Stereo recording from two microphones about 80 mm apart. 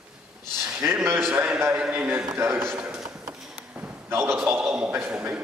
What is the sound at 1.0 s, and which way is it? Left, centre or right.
A man's voice, right.